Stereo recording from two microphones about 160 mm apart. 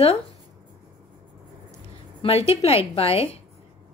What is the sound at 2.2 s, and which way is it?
A woman's voice, 40° left (ahead or behind).